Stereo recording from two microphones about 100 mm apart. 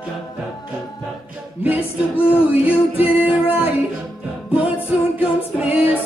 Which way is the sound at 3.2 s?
15° right (ahead or behind).